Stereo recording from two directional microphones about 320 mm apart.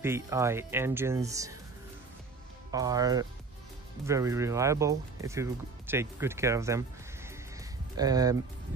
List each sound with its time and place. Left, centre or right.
0.0 s speech: centre
2.7 s speech: centre
8.0 s speech: centre